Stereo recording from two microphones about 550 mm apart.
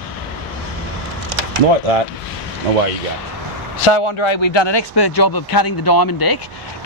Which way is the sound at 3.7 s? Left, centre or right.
Left.